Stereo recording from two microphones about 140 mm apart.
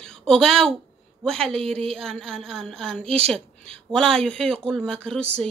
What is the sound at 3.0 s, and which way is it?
Speech, 45° right (ahead or behind).